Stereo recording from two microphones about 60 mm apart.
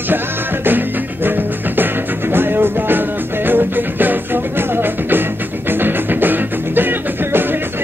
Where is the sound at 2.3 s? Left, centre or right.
Right.